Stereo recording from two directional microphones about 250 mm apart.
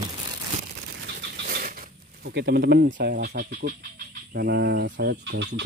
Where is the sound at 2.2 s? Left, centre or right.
Right.